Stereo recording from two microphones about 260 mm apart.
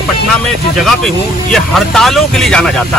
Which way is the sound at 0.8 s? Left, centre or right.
Centre.